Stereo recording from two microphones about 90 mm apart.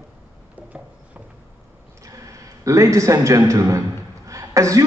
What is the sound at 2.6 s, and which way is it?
A woman's voice, 35° right (ahead or behind).